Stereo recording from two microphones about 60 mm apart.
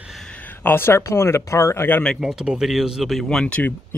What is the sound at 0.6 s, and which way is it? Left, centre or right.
Speech, left.